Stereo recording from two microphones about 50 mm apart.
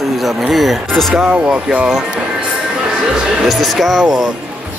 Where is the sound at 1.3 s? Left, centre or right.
Right.